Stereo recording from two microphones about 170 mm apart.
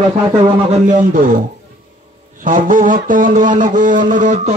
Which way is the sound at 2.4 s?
50° right (ahead or behind).